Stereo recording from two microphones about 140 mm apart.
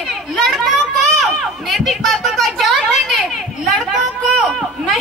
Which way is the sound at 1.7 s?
Centre (ahead or behind).